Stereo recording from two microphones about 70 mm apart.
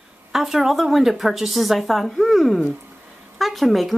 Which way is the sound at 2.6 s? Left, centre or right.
Right.